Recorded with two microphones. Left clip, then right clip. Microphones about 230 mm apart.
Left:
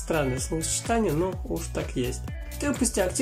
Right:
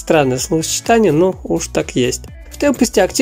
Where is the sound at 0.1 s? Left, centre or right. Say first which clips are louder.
Right 14 dB; right.